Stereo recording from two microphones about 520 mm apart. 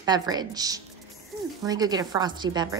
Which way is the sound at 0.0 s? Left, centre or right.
Centre.